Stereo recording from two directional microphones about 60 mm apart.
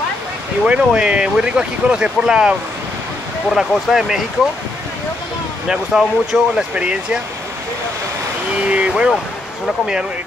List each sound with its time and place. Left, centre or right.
0.7 s speech: centre
3.5 s speech: centre
5.7 s speech: centre
8.6 s speech: centre